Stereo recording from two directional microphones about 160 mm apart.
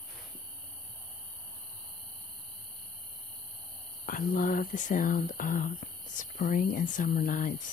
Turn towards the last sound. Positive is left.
turn(degrees=60)  # may be behind; listen again after turning